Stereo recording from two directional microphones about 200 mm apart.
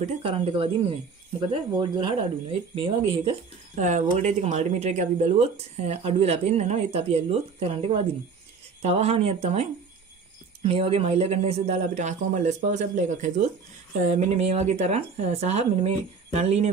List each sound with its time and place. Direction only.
0.0 s speech: 30° right (ahead or behind)
3.7 s speech: 35° right (ahead or behind)